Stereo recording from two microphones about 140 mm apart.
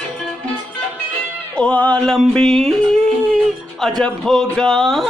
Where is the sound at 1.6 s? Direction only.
10° left (ahead or behind).